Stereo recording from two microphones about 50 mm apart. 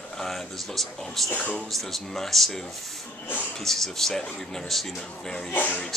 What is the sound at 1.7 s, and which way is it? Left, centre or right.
A man's voice, centre.